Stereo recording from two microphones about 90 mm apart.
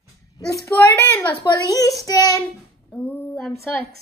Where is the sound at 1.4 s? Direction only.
40° left (ahead or behind).